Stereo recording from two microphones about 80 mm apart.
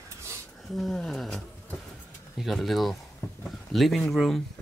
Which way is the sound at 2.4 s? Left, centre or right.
Centre.